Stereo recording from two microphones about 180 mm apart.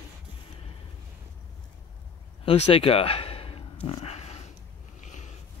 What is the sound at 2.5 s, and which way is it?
Speech, 30° left (ahead or behind).